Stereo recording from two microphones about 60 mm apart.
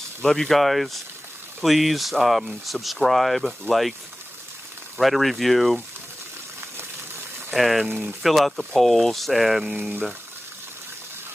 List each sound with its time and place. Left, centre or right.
0.2 s speech: centre
4.9 s speech: centre
7.5 s speech: centre
9.8 s speech: right